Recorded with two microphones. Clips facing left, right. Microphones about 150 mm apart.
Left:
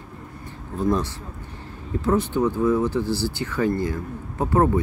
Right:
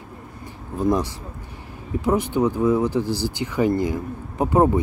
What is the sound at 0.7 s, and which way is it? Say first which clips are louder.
Speech: right 2 dB; 15° right (ahead or behind).